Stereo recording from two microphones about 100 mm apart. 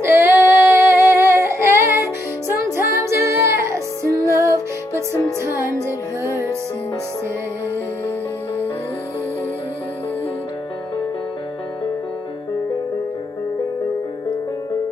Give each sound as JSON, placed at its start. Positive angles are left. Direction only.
{"t": 0.0, "sound": "female singing", "side_deg": -25}